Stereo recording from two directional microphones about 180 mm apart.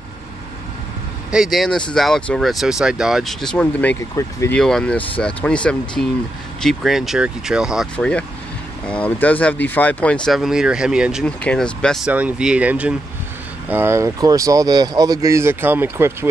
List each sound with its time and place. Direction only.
1.3 s speech: centre (ahead or behind)
12.1 s speech: 10° right (ahead or behind)